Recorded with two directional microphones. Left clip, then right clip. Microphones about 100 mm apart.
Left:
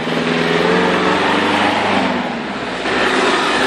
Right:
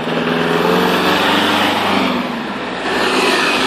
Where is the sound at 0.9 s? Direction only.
85° right.